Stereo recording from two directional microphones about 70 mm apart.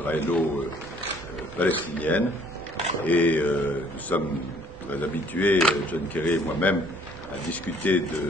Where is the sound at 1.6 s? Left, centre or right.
Left.